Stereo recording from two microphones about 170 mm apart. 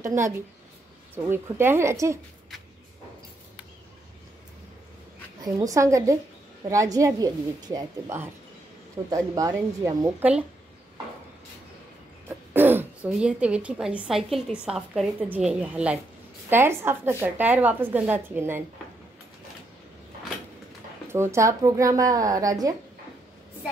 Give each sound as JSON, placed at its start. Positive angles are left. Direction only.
{"t": 0.0, "sound": "speech", "side_deg": -15}
{"t": 5.4, "sound": "a woman's voice", "side_deg": -20}
{"t": 12.3, "sound": "speech", "side_deg": -10}
{"t": 21.1, "sound": "a woman's voice", "side_deg": -15}